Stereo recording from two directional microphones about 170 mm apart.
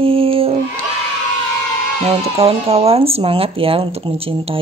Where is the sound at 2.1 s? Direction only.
35° right (ahead or behind).